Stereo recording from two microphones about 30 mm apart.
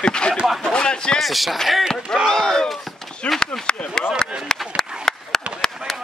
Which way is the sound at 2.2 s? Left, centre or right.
Centre.